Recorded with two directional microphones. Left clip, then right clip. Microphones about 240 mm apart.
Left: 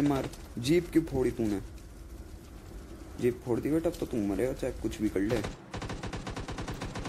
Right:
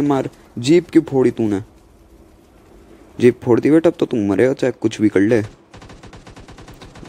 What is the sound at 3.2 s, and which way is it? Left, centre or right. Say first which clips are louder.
Speech: right 17 dB; right.